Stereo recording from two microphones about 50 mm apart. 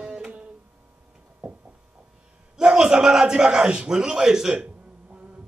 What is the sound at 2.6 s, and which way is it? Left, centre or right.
Speech, centre.